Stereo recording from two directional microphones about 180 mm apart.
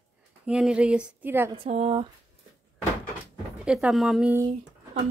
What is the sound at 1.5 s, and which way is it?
Speech, 35° right (ahead or behind).